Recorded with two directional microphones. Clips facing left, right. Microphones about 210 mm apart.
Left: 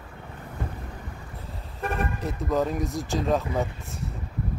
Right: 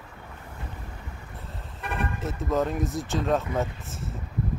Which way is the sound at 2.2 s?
Centre (ahead or behind).